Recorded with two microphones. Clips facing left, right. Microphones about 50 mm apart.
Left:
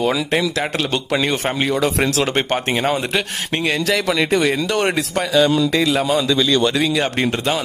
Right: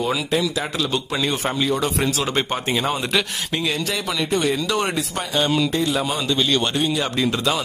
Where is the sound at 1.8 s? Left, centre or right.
Left.